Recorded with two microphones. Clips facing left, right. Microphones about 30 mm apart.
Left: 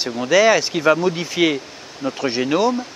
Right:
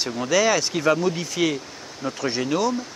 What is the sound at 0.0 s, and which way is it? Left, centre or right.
Speech, centre.